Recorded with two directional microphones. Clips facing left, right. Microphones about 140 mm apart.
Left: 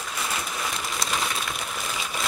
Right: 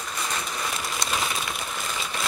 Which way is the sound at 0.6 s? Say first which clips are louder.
Even; centre (ahead or behind).